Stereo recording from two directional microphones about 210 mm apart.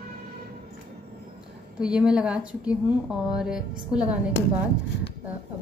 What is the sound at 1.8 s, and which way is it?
A woman's voice, 5° right (ahead or behind).